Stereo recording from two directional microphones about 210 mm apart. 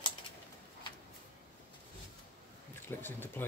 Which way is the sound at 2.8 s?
10° left (ahead or behind).